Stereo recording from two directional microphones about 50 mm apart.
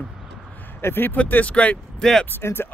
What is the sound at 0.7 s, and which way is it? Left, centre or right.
Speech, left.